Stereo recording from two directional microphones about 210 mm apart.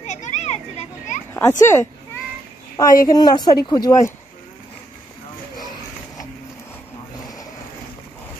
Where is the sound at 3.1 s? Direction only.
20° left (ahead or behind).